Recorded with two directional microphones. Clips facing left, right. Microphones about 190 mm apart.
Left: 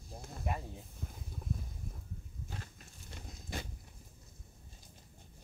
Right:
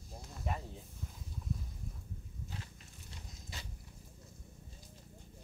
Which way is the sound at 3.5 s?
50° left (ahead or behind).